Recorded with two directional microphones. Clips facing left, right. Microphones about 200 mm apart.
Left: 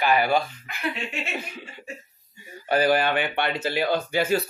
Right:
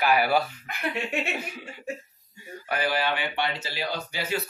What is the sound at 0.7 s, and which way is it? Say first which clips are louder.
Speech: right 1 dB; 55° right (ahead or behind).